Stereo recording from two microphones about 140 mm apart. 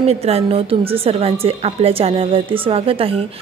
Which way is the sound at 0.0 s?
45° right (ahead or behind).